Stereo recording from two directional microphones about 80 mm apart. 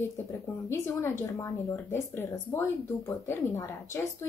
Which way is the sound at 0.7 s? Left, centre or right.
Left.